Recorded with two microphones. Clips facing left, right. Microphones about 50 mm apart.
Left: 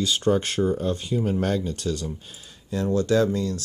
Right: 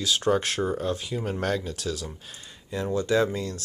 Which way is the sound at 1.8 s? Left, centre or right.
Centre.